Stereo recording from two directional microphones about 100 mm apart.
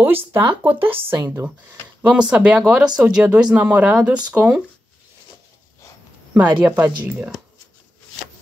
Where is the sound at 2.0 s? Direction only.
10° right (ahead or behind).